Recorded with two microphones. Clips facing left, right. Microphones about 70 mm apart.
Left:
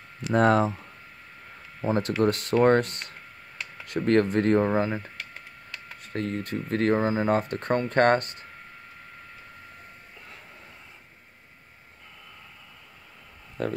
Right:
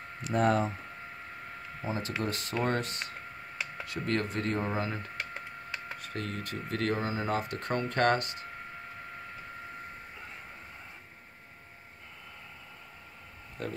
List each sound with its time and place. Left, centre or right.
0.3 s speech: left
1.9 s speech: left
4.6 s speech: left
5.3 s splinter: centre
6.0 s speech: left